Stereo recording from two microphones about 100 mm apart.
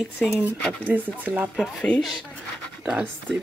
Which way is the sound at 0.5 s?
10° left (ahead or behind).